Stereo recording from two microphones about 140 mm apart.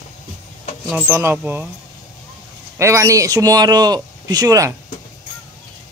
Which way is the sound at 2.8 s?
20° right (ahead or behind).